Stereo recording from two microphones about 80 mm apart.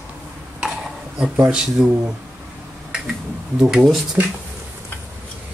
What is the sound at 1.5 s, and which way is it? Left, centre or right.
Speech, centre.